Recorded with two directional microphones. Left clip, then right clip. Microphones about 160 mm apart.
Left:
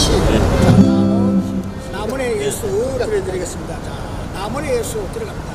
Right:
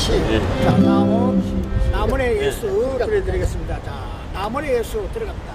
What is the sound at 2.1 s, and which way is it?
Vehicle, 25° left (ahead or behind).